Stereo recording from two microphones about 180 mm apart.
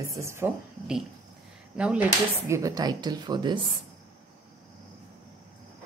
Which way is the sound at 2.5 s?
20° right (ahead or behind).